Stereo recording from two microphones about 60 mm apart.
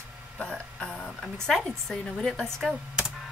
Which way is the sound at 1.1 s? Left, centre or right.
Centre.